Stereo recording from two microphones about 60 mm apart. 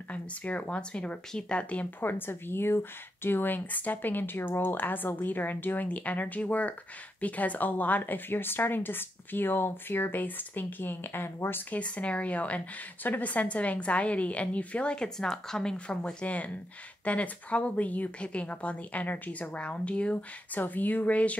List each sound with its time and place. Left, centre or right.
0.1 s a woman's voice: left
2.0 s speech: left
11.7 s a woman's voice: left